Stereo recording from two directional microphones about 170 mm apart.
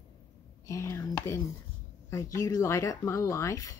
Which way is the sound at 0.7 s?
15° left (ahead or behind).